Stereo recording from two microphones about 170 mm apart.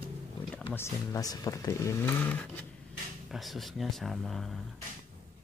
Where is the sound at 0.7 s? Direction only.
15° left (ahead or behind); by 4.6 s centre (ahead or behind).